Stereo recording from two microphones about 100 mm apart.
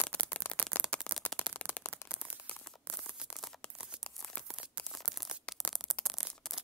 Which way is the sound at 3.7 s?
5° right (ahead or behind).